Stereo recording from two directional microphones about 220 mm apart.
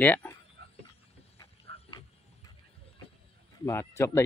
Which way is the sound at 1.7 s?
45° right (ahead or behind).